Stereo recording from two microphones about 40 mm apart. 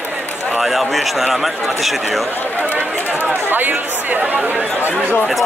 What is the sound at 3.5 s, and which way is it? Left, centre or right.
Speech, right.